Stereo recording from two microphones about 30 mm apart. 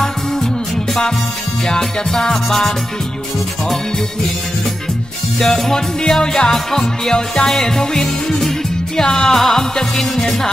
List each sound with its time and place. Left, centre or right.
1.7 s music: centre
5.6 s music: centre
9.0 s music: left
9.3 s music: centre